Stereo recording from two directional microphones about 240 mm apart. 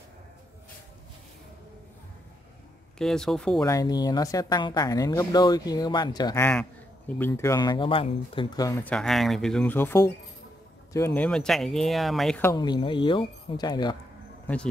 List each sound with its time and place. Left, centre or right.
3.0 s speech: centre
3.6 s speech: centre
12.4 s speech: centre